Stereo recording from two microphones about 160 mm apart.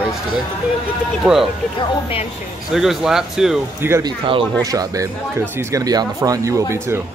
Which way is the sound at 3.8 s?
15° right (ahead or behind).